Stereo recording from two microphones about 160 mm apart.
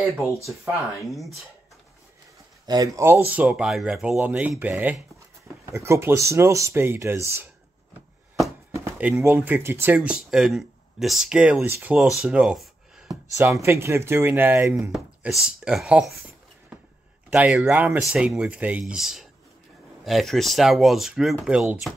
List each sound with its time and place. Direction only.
0.2 s speech: 15° right (ahead or behind)
1.0 s speech: centre (ahead or behind)
2.6 s speech: 25° right (ahead or behind)
3.3 s speech: 5° right (ahead or behind)
8.9 s speech: 15° right (ahead or behind)
13.4 s speech: 15° right (ahead or behind)
14.9 s speech: centre (ahead or behind)
17.3 s speech: 5° right (ahead or behind)